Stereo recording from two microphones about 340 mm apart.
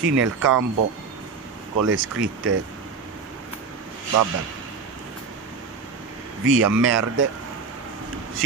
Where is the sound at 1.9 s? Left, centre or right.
Right.